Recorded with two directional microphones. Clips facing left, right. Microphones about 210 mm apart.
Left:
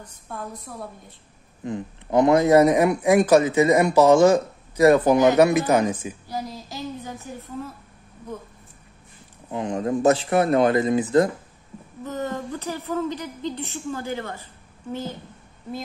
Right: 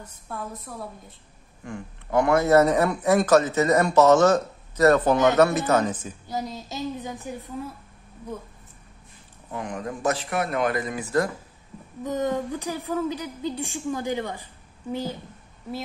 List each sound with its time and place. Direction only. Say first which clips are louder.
0.0 s a woman's voice: even; centre (ahead or behind)
1.6 s speech: left 6 dB; 20° left (ahead or behind)
6.2 s a woman's voice: right 3 dB; 20° right (ahead or behind)
9.5 s speech: left 7 dB; 25° left (ahead or behind)
12.0 s speech: right 3 dB; 15° right (ahead or behind)